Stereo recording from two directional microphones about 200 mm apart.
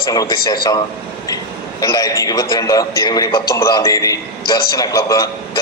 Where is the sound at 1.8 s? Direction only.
20° left (ahead or behind).